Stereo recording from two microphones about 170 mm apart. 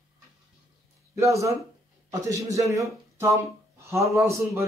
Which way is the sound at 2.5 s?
20° right (ahead or behind).